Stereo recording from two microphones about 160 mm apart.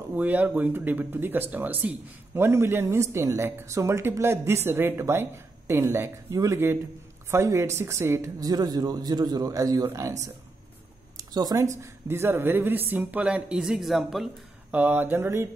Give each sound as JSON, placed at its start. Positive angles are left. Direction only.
{"t": 0.1, "sound": "speech", "side_deg": -10}
{"t": 11.1, "sound": "speech", "side_deg": -20}